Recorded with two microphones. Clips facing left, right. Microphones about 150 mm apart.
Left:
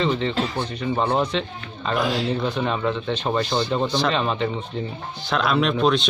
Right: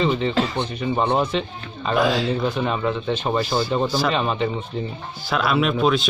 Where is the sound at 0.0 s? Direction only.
5° right (ahead or behind).